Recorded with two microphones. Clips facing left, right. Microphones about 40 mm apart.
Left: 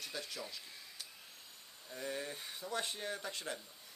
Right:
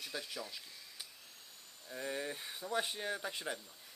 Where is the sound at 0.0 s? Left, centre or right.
Centre.